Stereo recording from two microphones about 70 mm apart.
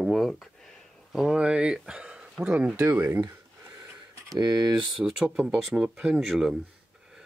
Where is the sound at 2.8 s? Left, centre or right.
Right.